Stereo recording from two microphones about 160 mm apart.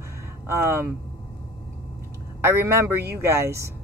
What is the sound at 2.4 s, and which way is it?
Speech, 15° right (ahead or behind).